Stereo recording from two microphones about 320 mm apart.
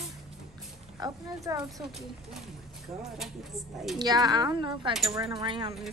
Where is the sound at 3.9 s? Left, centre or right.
Centre.